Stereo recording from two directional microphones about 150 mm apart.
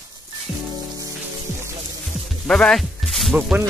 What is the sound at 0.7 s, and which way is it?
Music, 25° right (ahead or behind).